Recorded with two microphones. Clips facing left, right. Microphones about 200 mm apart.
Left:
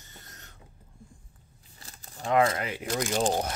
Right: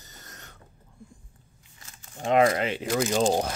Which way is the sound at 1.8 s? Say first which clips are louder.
Left 2 dB; 35° left (ahead or behind).